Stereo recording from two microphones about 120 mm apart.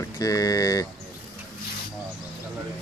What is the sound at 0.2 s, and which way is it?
Speech, 30° left (ahead or behind).